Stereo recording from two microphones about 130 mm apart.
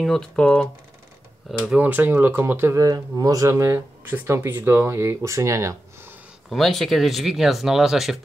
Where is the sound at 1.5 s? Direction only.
10° right (ahead or behind).